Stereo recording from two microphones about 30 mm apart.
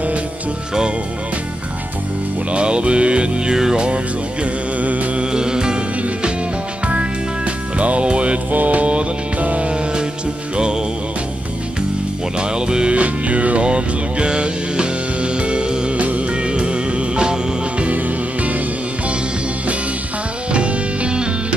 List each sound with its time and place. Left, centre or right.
2.5 s music: right
4.7 s music: right
5.1 s music: right
6.9 s music: right
8.5 s music: right
9.6 s music: right
12.4 s music: right
12.9 s music: right
13.6 s music: right
15.9 s music: right
16.3 s music: right
17.9 s music: right
20.5 s music: right